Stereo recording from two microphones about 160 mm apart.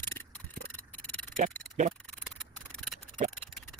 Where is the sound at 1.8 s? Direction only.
50° right (ahead or behind).